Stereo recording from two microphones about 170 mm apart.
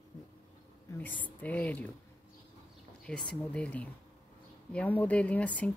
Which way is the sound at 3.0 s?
5° left (ahead or behind).